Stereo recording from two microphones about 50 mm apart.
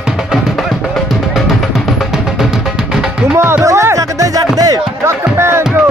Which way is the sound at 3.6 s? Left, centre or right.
Right.